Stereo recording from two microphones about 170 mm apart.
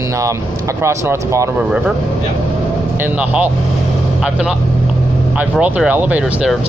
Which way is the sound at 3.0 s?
10° right (ahead or behind).